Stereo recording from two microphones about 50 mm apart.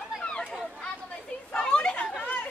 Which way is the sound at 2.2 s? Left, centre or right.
Left.